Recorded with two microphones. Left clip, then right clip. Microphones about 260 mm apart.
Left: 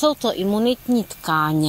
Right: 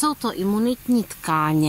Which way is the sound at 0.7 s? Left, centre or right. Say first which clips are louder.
Left 2 dB; centre.